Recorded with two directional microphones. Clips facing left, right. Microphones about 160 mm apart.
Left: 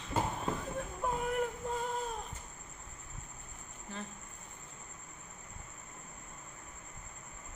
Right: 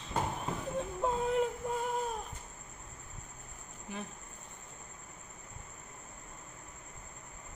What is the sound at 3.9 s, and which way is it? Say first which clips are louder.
Cricket: right 2 dB; 15° right (ahead or behind).